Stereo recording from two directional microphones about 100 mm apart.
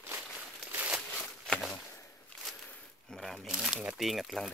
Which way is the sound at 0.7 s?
10° right (ahead or behind).